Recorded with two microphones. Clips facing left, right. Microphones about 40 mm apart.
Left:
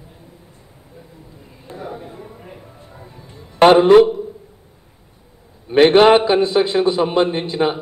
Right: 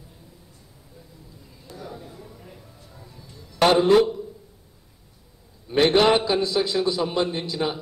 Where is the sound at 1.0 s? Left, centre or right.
Left.